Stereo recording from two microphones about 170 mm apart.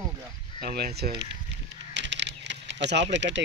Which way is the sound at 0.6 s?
65° right (ahead or behind).